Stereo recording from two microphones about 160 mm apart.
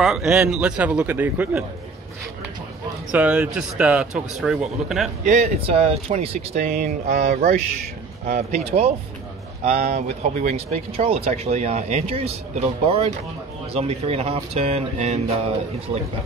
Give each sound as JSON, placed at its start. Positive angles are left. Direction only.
{"t": 0.0, "sound": "a man's voice", "side_deg": 0}
{"t": 3.1, "sound": "a man's voice", "side_deg": -5}
{"t": 5.2, "sound": "speech", "side_deg": -45}
{"t": 6.7, "sound": "mantra", "side_deg": -55}
{"t": 8.3, "sound": "speech", "side_deg": -40}
{"t": 9.9, "sound": "speech", "side_deg": -45}